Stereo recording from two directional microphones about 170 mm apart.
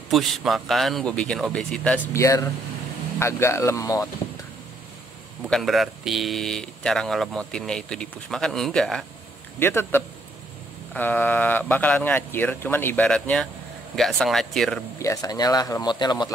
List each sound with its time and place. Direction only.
0.1 s speech: centre (ahead or behind)
2.1 s speech: 20° left (ahead or behind)
5.4 s speech: centre (ahead or behind)
9.6 s speech: 15° left (ahead or behind)
15.0 s speech: 20° left (ahead or behind)